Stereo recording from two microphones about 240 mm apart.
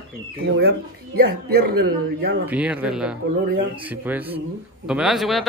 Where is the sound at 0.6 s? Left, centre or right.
Right.